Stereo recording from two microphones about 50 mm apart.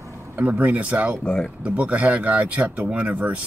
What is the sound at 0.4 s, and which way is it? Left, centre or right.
Speech, right.